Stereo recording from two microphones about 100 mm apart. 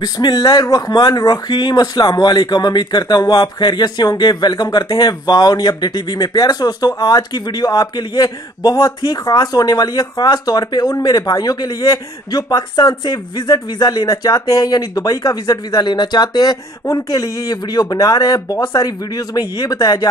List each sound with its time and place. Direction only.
0.0 s speech: 40° left (ahead or behind)